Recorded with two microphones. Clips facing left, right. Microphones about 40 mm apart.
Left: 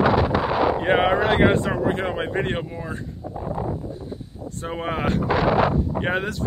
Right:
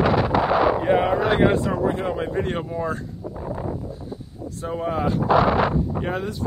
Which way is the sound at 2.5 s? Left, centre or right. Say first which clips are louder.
Right 4 dB; centre.